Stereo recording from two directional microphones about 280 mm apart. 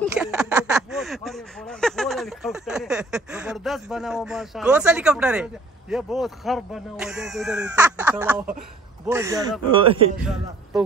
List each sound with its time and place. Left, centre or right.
0.0 s speech: centre